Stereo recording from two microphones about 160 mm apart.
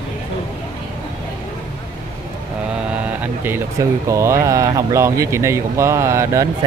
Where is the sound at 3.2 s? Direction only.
15° right (ahead or behind).